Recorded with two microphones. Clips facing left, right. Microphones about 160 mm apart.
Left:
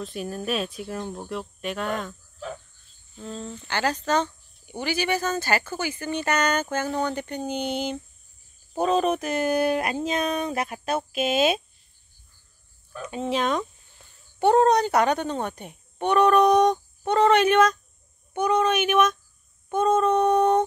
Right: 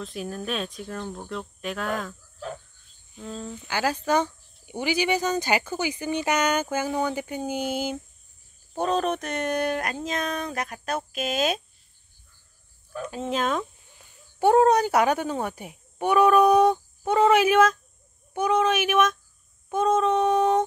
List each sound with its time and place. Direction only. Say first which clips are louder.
0.0 s speech: left 2 dB; centre (ahead or behind)
8.7 s speech: left 3 dB; 5° left (ahead or behind)
13.1 s speech: left 2 dB; centre (ahead or behind)